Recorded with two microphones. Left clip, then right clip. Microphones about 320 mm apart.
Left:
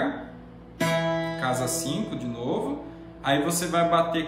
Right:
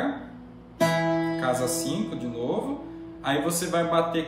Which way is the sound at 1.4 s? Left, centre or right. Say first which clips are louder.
Right 1 dB; centre.